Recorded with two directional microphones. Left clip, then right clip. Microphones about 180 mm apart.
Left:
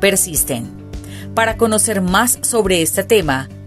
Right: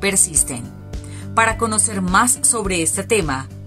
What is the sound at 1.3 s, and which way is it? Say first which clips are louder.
Speech: left 2 dB; 40° left (ahead or behind).